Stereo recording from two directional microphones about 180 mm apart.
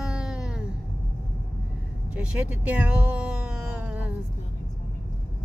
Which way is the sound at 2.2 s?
5° right (ahead or behind).